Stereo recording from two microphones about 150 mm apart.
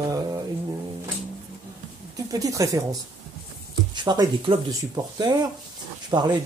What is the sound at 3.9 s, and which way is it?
A woman's voice, 30° right (ahead or behind).